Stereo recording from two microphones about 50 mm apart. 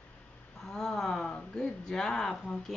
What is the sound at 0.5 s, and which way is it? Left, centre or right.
Speech, centre.